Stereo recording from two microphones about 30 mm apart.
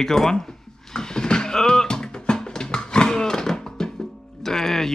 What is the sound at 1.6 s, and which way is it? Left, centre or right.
Music, left.